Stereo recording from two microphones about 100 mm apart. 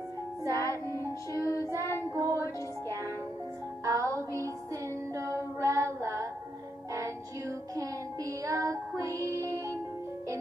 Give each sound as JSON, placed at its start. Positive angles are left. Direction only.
{"t": 0.5, "sound": "music", "side_deg": 30}
{"t": 1.8, "sound": "child singing", "side_deg": 25}
{"t": 2.2, "sound": "music", "side_deg": 30}
{"t": 3.8, "sound": "music", "side_deg": -35}